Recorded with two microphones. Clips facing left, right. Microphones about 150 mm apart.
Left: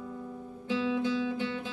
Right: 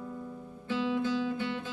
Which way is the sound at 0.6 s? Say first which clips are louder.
Left 1 dB; 15° left (ahead or behind).